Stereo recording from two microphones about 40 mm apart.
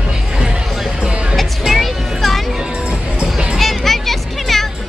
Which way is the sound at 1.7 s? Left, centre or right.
Centre.